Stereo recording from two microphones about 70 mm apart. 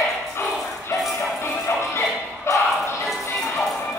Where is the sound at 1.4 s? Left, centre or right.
Left.